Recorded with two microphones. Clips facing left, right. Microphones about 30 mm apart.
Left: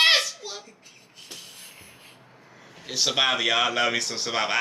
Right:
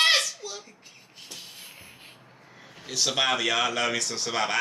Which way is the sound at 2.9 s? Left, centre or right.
Centre.